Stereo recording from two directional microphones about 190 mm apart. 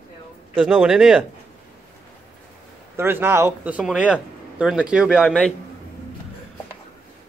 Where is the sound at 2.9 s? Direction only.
10° right (ahead or behind).